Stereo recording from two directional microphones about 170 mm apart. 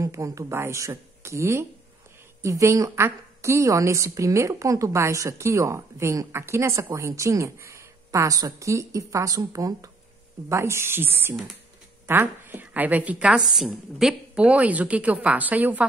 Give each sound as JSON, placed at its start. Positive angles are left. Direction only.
{"t": 0.0, "sound": "a woman's voice", "side_deg": -20}